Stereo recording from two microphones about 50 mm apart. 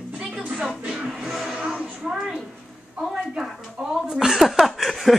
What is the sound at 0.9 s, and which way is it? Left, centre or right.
Music, centre.